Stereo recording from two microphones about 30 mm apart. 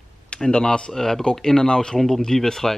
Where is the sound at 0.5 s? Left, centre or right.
Left.